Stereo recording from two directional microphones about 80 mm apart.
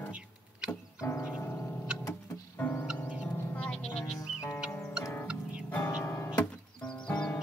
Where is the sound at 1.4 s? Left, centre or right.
Left.